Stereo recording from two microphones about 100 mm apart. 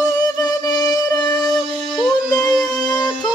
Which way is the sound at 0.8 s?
40° left (ahead or behind).